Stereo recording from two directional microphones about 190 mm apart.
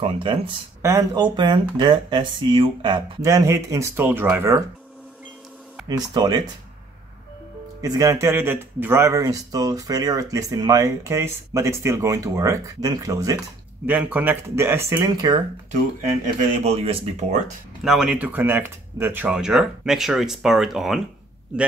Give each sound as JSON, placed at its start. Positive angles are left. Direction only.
{"t": 0.0, "sound": "speech", "side_deg": -25}
{"t": 5.9, "sound": "speech", "side_deg": -20}
{"t": 7.8, "sound": "speech", "side_deg": -15}
{"t": 16.3, "sound": "speech", "side_deg": -35}
{"t": 17.8, "sound": "speech", "side_deg": -5}